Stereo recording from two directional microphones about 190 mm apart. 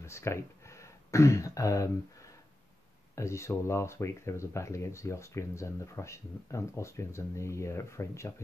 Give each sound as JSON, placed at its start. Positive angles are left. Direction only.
{"t": 0.0, "sound": "speech", "side_deg": 15}